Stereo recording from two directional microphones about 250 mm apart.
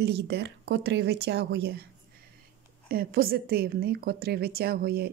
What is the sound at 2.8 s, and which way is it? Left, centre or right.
Speech, right.